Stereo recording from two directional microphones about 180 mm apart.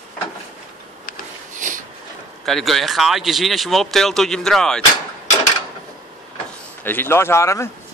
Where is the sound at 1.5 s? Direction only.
45° right (ahead or behind).